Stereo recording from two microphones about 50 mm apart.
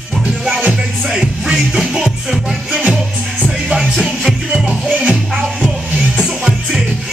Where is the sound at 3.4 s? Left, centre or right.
Right.